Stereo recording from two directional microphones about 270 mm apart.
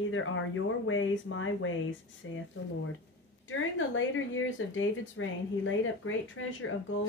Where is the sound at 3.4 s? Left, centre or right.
Left.